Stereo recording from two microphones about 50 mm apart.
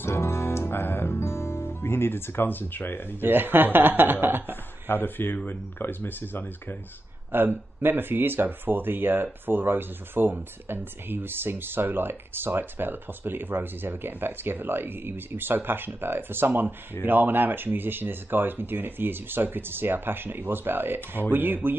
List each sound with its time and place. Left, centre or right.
0.0 s music: left
1.2 s speech: left
3.2 s speech: right
4.8 s speech: left
7.3 s speech: right